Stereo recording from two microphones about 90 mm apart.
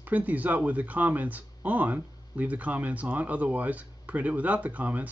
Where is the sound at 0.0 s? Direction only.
20° right (ahead or behind).